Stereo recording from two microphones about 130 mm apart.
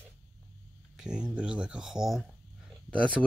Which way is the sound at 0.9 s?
5° right (ahead or behind).